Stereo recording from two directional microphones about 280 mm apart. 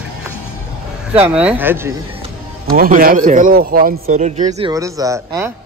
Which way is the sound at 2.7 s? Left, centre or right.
Right.